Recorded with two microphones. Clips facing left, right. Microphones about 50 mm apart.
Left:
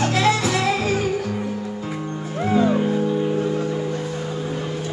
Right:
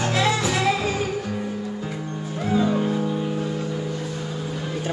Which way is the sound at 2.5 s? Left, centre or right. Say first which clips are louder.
Left 3 dB; left.